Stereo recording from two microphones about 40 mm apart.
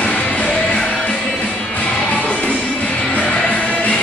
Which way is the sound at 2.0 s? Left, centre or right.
Left.